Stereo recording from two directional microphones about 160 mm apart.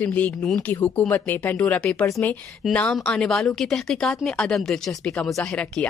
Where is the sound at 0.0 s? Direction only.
10° left (ahead or behind).